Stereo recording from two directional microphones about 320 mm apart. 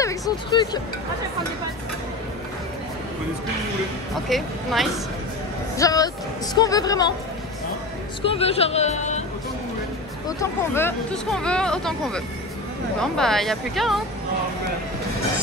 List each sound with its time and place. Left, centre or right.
0.0 s speech: centre
4.3 s speech: centre
5.8 s a woman's voice: centre
8.2 s speech: centre
10.2 s speech: centre